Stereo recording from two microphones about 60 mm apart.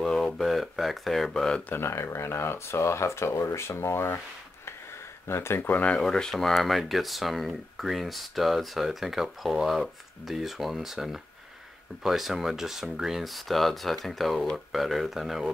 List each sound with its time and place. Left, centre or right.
0.0 s speech: centre
1.7 s speech: left
5.3 s speech: left
5.7 s speech: left
5.9 s speech: centre